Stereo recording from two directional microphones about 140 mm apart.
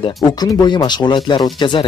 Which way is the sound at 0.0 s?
30° left (ahead or behind).